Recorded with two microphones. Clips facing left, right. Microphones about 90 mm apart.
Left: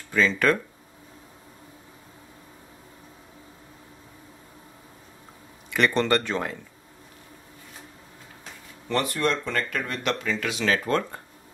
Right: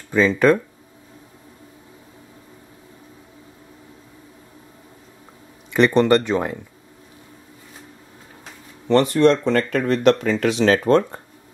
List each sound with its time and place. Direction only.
0.1 s speech: 20° right (ahead or behind)
5.7 s speech: 20° right (ahead or behind)
8.8 s speech: 30° right (ahead or behind)
9.5 s speech: 40° right (ahead or behind)
10.9 s speech: 20° right (ahead or behind)